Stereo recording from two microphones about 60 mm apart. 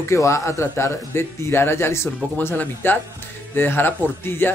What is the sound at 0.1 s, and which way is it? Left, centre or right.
A man's voice, left.